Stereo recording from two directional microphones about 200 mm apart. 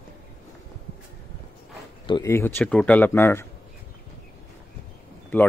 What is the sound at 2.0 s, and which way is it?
Speech, 25° left (ahead or behind).